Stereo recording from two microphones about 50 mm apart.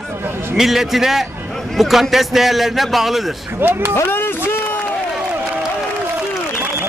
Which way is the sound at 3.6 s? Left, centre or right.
Right.